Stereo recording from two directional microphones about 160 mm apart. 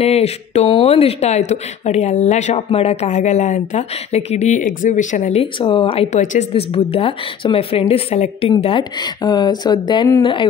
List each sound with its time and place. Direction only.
0.0 s speech: 40° left (ahead or behind)
5.4 s speech: 35° left (ahead or behind)
6.1 s speech: 50° left (ahead or behind)
6.5 s speech: 35° left (ahead or behind)